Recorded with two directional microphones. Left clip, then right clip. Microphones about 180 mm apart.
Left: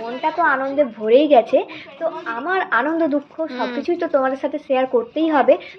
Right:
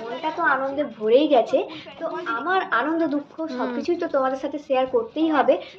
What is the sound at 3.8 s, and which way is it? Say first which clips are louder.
A woman's voice: left 4 dB; 30° left (ahead or behind).